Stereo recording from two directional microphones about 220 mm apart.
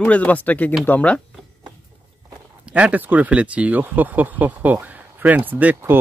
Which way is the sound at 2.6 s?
5° right (ahead or behind).